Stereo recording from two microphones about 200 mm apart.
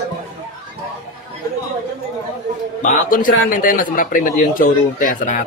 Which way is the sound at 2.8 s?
40° left (ahead or behind).